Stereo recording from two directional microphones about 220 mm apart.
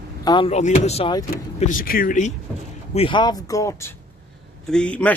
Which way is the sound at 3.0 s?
20° left (ahead or behind).